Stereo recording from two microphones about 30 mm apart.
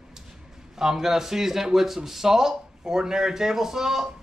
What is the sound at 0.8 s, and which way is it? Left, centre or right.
A man's voice, centre.